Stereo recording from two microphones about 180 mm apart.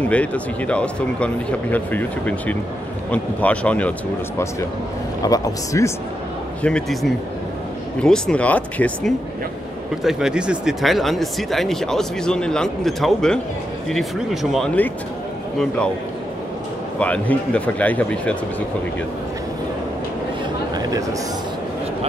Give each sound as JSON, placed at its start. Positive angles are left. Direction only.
{"t": 0.0, "sound": "speech", "side_deg": 5}
{"t": 5.2, "sound": "speech", "side_deg": 20}
{"t": 6.6, "sound": "speech", "side_deg": 5}
{"t": 10.0, "sound": "speech", "side_deg": -5}
{"t": 17.0, "sound": "speech", "side_deg": 5}
{"t": 20.7, "sound": "a sound", "side_deg": -20}